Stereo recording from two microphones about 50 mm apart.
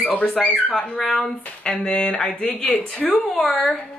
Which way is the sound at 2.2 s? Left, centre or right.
Left.